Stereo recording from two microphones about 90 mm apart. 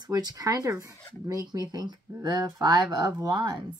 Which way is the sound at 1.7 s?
50° right (ahead or behind).